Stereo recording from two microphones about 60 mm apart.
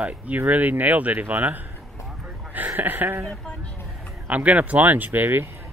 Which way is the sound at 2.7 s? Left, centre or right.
Right.